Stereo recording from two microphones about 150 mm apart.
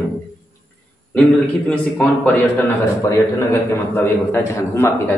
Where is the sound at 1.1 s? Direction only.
10° left (ahead or behind).